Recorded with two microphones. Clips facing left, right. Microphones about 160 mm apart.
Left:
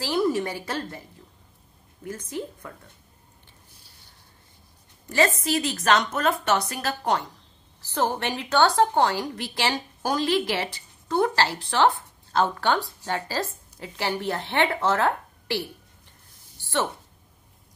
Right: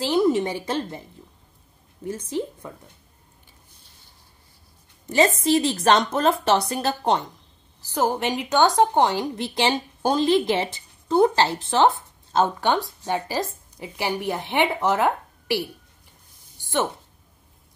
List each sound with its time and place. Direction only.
0.0 s a woman's voice: 20° right (ahead or behind)
2.0 s a woman's voice: 25° right (ahead or behind)
5.4 s a woman's voice: 25° right (ahead or behind)
7.8 s a woman's voice: 15° right (ahead or behind)